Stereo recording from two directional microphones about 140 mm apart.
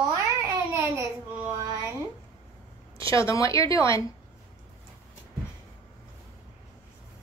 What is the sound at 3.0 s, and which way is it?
A woman's voice, 20° left (ahead or behind).